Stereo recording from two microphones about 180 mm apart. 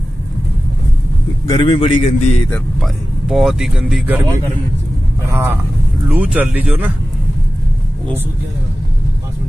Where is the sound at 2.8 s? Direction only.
Centre (ahead or behind).